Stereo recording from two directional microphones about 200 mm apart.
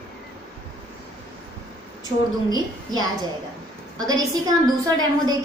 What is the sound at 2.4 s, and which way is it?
A woman's voice, 20° right (ahead or behind).